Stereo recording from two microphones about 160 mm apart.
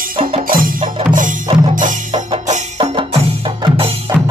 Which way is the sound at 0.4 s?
60° right (ahead or behind).